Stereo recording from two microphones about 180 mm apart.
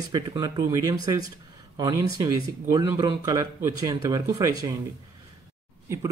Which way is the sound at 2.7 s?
20° right (ahead or behind).